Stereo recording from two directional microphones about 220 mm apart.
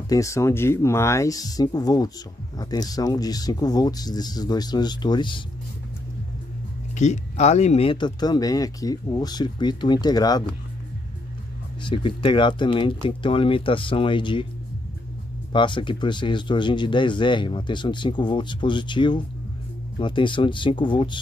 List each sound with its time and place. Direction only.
0.1 s speech: 15° left (ahead or behind)
7.0 s speech: 30° left (ahead or behind)
11.8 s speech: 25° left (ahead or behind)
15.5 s speech: 20° left (ahead or behind)